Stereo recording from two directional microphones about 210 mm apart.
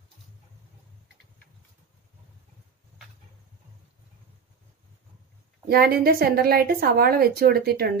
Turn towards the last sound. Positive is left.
turn(degrees=-50)  # may be behind; listen again after turning